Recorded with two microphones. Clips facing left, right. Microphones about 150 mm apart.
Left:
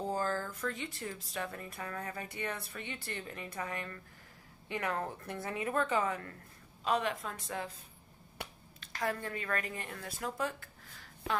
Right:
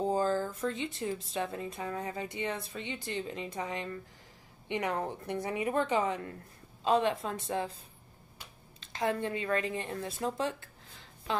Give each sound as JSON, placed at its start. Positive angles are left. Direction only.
{"t": 0.0, "sound": "speech", "side_deg": -20}
{"t": 8.4, "sound": "a sound", "side_deg": 60}
{"t": 8.7, "sound": "speech", "side_deg": -25}